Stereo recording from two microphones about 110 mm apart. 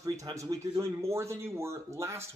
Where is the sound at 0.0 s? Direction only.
30° right (ahead or behind).